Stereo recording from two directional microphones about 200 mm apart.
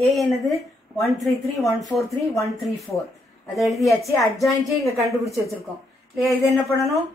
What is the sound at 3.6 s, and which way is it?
Speech, centre (ahead or behind).